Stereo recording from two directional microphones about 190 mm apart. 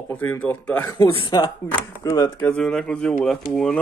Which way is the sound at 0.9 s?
25° left (ahead or behind).